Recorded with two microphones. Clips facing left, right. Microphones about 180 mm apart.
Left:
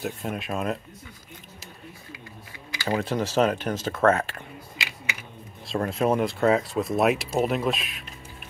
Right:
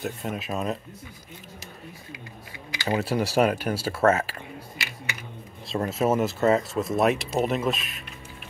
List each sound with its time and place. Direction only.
0.0 s speech: centre (ahead or behind)
2.7 s a sound: 20° right (ahead or behind)
3.0 s speech: 10° right (ahead or behind)
5.7 s speech: 5° right (ahead or behind)